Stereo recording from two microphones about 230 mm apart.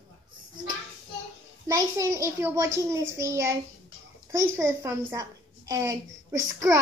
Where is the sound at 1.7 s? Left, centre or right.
Centre.